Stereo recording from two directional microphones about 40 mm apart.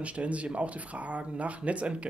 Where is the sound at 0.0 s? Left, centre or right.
Right.